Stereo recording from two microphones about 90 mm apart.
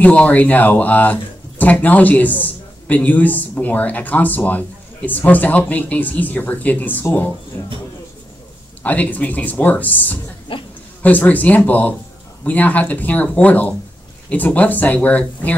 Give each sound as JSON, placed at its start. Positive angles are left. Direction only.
{"t": 0.0, "sound": "speech", "side_deg": 15}
{"t": 8.8, "sound": "speech", "side_deg": 20}
{"t": 10.5, "sound": "a woman's voice", "side_deg": 85}
{"t": 11.0, "sound": "speech", "side_deg": 20}